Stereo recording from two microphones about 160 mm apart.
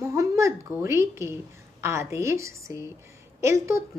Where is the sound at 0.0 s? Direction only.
20° right (ahead or behind).